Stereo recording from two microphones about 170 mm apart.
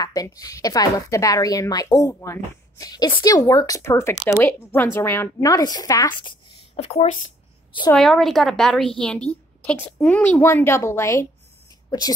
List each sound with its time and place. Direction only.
0.0 s a woman's voice: 20° left (ahead or behind)
6.8 s speech: 40° left (ahead or behind)
7.9 s a woman's voice: centre (ahead or behind)